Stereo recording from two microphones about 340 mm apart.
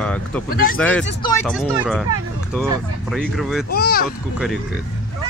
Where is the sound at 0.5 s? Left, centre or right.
Left.